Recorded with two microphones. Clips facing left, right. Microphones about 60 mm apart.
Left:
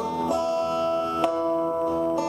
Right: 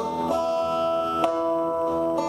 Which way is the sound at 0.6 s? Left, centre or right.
Left.